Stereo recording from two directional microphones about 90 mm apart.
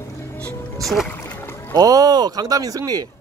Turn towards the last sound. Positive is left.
turn(degrees=-40)  # may be behind; listen again after turning